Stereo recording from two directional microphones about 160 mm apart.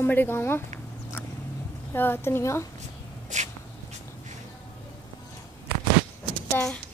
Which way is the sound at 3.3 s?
50° right (ahead or behind).